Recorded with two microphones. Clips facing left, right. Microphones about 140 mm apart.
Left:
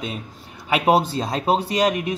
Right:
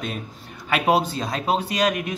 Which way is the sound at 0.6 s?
25° left (ahead or behind).